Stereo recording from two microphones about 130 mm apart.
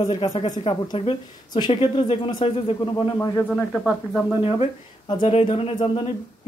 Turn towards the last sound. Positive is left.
turn(degrees=45)  # may be behind; listen again after turning